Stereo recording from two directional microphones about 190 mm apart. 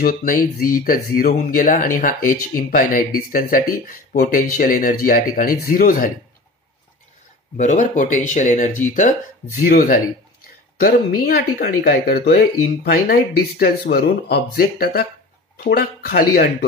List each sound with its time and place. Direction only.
0.0 s speech: 50° left (ahead or behind)
7.5 s speech: 40° left (ahead or behind)